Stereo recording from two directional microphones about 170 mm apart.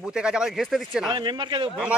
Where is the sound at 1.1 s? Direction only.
25° right (ahead or behind).